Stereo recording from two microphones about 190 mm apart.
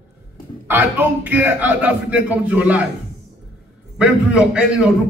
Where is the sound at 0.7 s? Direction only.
10° right (ahead or behind).